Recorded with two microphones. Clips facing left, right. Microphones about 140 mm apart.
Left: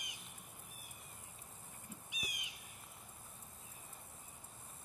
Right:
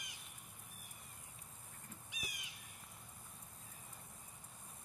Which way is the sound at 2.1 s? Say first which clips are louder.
Left 1 dB; 20° left (ahead or behind).